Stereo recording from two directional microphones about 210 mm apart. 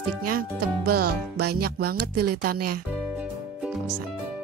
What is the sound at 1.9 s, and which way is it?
Speech, 90° right.